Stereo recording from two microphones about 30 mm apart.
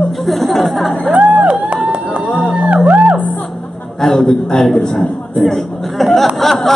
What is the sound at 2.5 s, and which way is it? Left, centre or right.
Music, right.